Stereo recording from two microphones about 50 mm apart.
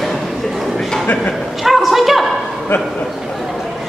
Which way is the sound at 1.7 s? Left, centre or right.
Centre.